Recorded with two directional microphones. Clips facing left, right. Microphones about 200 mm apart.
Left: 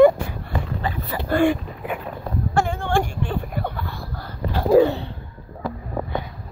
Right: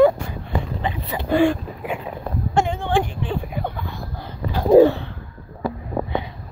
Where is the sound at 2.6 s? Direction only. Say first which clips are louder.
Right 1 dB; 20° right (ahead or behind).